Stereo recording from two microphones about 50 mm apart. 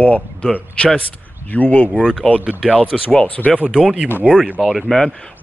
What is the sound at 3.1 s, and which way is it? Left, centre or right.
Speech, left.